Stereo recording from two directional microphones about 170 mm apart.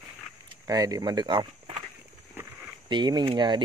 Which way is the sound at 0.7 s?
20° right (ahead or behind).